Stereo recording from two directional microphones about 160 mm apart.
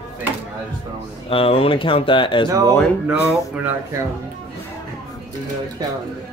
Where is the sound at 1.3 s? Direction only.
35° left (ahead or behind).